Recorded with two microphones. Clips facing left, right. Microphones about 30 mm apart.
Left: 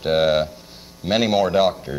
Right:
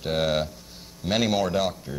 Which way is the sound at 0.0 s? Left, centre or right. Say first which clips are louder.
Left 7 dB; left.